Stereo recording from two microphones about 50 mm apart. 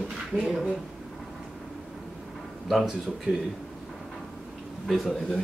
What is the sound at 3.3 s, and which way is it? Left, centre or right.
Speech, right.